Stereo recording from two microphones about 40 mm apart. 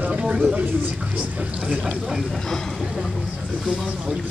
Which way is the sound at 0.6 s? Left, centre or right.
Right.